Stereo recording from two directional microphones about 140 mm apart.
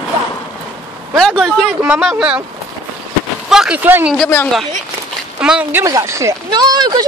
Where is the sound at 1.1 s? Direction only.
5° left (ahead or behind).